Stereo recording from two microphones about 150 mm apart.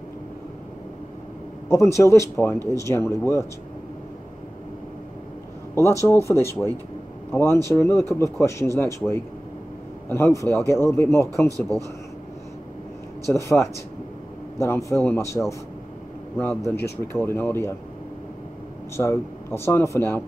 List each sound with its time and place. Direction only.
1.7 s a man's voice: 20° left (ahead or behind)
5.8 s speech: 20° left (ahead or behind)
11.4 s speech: 20° right (ahead or behind)
13.3 s a man's voice: 20° left (ahead or behind)
16.7 s speech: 90° left
17.1 s speech: 15° left (ahead or behind)
18.9 s speech: 15° left (ahead or behind)